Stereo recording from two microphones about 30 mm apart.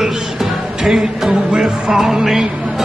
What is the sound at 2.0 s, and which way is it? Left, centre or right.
Music, centre.